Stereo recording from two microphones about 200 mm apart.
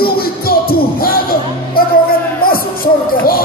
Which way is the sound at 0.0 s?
50° left (ahead or behind).